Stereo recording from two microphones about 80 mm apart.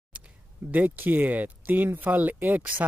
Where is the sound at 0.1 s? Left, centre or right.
Centre.